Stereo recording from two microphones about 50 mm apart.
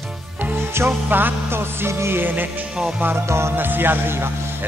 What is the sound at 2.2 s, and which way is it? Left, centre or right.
Music, right.